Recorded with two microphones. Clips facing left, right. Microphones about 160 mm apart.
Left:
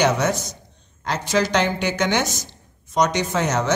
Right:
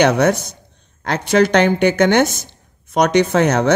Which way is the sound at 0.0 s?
60° right (ahead or behind).